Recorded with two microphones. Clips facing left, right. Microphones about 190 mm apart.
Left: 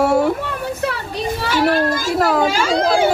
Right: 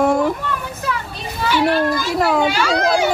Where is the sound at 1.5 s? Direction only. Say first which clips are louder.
Right 1 dB; 45° left (ahead or behind).